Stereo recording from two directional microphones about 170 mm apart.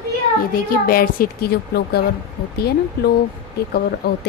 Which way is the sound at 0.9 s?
60° left (ahead or behind).